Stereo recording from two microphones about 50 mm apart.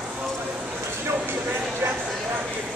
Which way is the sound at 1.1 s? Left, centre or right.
Right.